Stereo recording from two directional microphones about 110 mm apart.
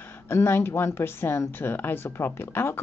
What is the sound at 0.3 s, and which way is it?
Speech, 20° left (ahead or behind).